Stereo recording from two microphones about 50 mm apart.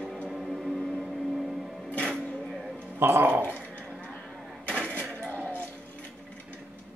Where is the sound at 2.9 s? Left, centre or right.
Right.